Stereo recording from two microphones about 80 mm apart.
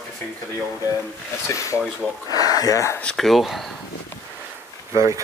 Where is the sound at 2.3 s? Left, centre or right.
Left.